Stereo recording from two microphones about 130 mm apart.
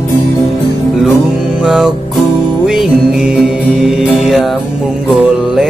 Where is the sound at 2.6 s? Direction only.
Centre (ahead or behind).